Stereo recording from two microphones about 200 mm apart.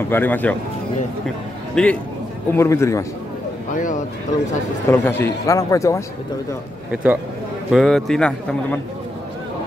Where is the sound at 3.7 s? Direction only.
40° left (ahead or behind).